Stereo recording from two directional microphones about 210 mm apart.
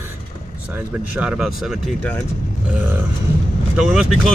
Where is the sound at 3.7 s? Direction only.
5° right (ahead or behind).